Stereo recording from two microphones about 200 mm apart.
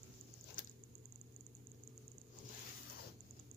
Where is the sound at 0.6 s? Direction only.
40° left (ahead or behind).